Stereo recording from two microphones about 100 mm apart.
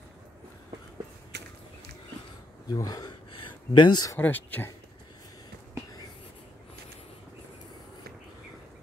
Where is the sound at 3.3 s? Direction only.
50° left (ahead or behind).